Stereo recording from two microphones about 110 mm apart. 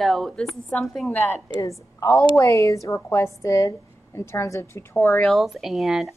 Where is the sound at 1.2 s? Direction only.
25° left (ahead or behind).